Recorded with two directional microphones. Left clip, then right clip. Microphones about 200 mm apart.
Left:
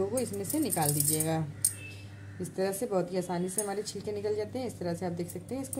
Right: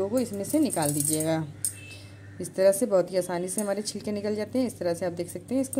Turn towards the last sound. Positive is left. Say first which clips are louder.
# right 7 dB
turn(degrees=-45)  # may be behind; listen again after turning